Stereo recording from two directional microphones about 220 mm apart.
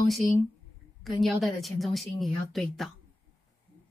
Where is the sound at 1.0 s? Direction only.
Centre (ahead or behind).